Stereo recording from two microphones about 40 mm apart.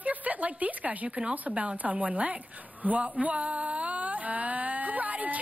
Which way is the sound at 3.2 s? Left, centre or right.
Right.